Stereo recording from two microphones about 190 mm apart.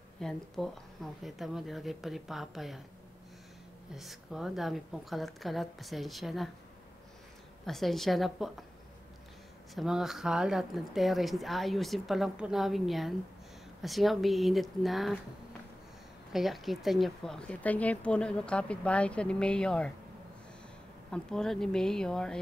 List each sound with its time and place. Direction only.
0.2 s speech: centre (ahead or behind)
3.9 s speech: centre (ahead or behind)
7.6 s speech: centre (ahead or behind)
9.8 s speech: centre (ahead or behind)
16.3 s speech: centre (ahead or behind)
21.1 s speech: 5° left (ahead or behind)